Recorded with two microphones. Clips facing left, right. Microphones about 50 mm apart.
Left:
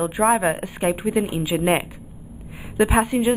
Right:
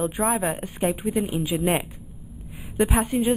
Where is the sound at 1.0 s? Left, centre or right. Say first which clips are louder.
Left 3 dB; left.